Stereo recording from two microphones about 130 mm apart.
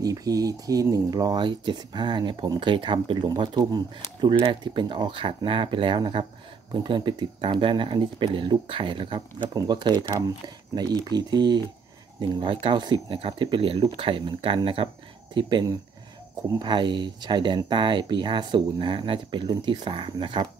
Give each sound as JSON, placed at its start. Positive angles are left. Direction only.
{"t": 0.0, "sound": "speech", "side_deg": -30}